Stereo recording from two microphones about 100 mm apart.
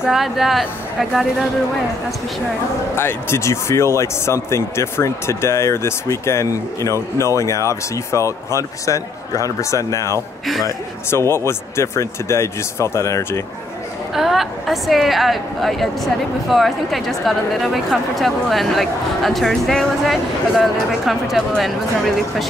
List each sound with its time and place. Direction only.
0.0 s a woman's voice: 5° right (ahead or behind)
3.0 s speech: 25° left (ahead or behind)
14.1 s a woman's voice: 5° right (ahead or behind)